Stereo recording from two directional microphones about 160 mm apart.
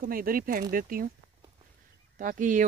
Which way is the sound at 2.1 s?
60° right (ahead or behind).